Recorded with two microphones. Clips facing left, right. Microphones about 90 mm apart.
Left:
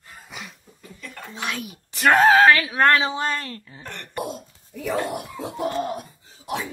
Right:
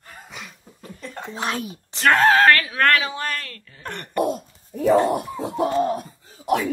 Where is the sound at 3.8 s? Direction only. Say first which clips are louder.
Right 8 dB; 55° right (ahead or behind).